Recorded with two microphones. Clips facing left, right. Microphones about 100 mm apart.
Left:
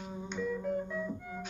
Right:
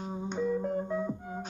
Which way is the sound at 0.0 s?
35° right (ahead or behind).